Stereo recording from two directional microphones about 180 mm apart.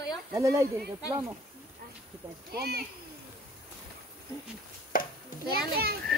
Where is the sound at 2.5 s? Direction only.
60° right (ahead or behind).